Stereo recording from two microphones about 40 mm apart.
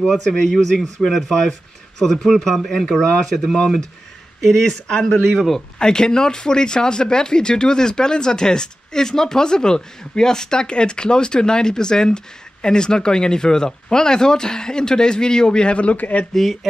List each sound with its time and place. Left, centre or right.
0.3 s speech: centre
2.9 s speech: left
4.4 s speech: centre
4.8 s speech: centre; by 16.3 s left